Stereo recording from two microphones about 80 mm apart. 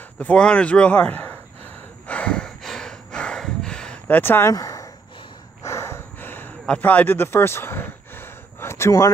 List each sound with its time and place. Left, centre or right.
0.2 s speech: centre
2.0 s a sound: centre
4.1 s speech: left
4.5 s speech: left
5.6 s snort: left
6.8 s a sound: left